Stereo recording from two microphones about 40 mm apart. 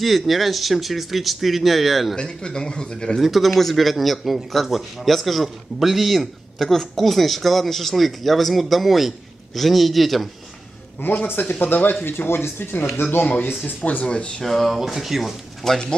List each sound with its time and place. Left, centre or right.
0.0 s speech: centre
2.1 s speech: left
3.2 s speech: centre
11.0 s speech: left
11.4 s speech: left
12.1 s speech: left
13.2 s speech: left
13.7 s speech: left
14.0 s speech: left
14.4 s speech: centre
14.8 s speech: centre
15.6 s speech: centre